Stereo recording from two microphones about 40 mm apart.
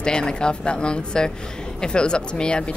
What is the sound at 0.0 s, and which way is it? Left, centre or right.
A woman's voice, left.